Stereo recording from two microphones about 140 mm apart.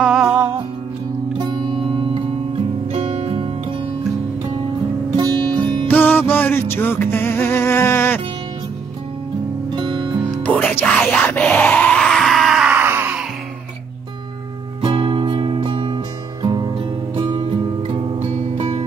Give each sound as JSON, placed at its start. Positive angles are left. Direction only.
{"t": 0.0, "sound": "music", "side_deg": -5}
{"t": 1.4, "sound": "music", "side_deg": -40}
{"t": 5.1, "sound": "music", "side_deg": -35}
{"t": 5.9, "sound": "music", "side_deg": 15}
{"t": 9.7, "sound": "music", "side_deg": -35}
{"t": 10.4, "sound": "music", "side_deg": 10}
{"t": 10.9, "sound": "screaming", "side_deg": 10}
{"t": 12.7, "sound": "screaming", "side_deg": -15}
{"t": 14.8, "sound": "music", "side_deg": -35}
{"t": 18.3, "sound": "music", "side_deg": -50}